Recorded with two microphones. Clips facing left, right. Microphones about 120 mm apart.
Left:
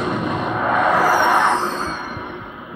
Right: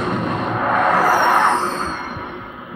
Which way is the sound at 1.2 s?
15° left (ahead or behind).